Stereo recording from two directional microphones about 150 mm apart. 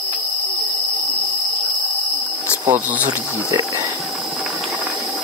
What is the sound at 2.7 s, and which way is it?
Speech, 10° right (ahead or behind).